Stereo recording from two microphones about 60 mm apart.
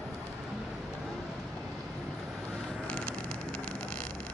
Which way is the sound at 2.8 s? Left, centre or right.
Centre.